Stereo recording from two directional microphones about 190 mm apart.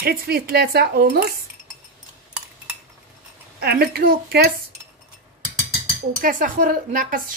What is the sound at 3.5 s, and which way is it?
Speech, 55° right (ahead or behind).